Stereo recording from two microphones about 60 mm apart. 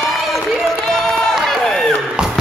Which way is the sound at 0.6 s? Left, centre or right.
Centre.